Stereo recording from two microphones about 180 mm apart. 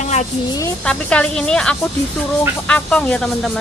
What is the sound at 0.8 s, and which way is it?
Speech, 5° left (ahead or behind).